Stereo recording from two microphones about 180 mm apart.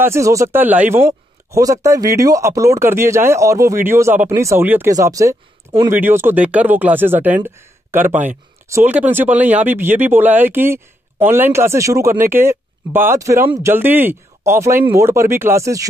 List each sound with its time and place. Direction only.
0.0 s speech: 15° right (ahead or behind)